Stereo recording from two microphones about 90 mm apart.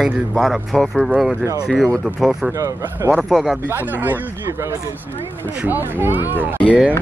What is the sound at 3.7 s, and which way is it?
Speech, 20° right (ahead or behind).